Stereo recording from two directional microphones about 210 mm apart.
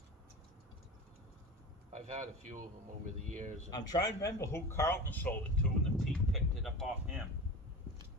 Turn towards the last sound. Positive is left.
turn(degrees=0)  # may be behind; listen again after turning